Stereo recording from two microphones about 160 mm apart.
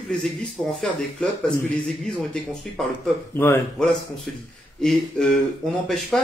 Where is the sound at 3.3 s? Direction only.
15° left (ahead or behind).